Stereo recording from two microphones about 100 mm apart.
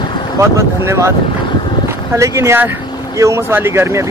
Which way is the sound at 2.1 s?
30° right (ahead or behind).